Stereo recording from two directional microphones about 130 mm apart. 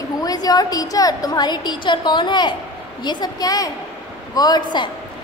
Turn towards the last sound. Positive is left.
turn(degrees=35)  # may be behind; listen again after turning